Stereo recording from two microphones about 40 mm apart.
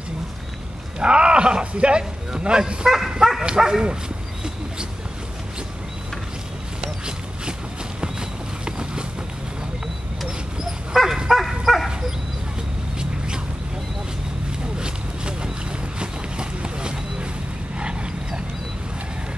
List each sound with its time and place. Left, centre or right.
0.9 s speech: right
6.8 s a sound: centre
8.6 s boat: right
10.9 s dog: centre
11.2 s bow-wow: centre
14.8 s a sound: right